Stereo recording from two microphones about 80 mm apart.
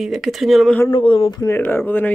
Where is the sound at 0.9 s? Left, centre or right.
Left.